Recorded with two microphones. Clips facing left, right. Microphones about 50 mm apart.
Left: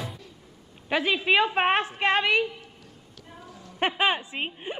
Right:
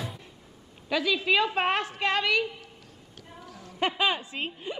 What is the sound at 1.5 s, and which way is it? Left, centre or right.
Child singing, left.